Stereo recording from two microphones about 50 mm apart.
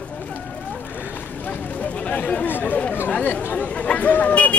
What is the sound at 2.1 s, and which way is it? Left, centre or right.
Chatter, left.